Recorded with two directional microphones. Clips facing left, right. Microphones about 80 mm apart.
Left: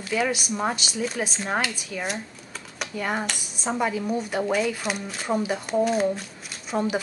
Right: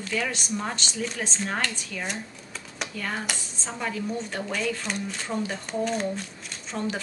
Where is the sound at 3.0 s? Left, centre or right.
Centre.